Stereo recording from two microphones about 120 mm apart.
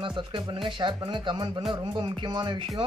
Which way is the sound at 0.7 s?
40° right (ahead or behind).